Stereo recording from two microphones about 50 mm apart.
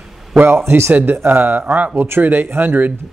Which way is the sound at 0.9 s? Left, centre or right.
Right.